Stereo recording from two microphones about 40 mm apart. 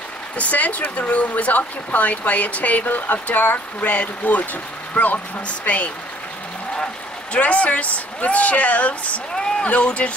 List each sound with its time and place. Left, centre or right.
0.4 s speech: left
7.3 s speech: left
9.3 s a sound: centre
9.7 s speech: left